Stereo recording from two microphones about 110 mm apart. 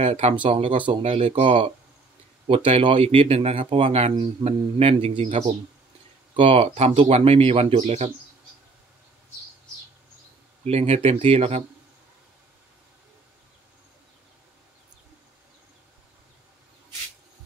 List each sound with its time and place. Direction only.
0.0 s speech: 75° right (ahead or behind); by 0.9 s 50° right (ahead or behind)
1.0 s speech: 65° right (ahead or behind); by 8.1 s 90° right
10.6 s speech: 75° right (ahead or behind)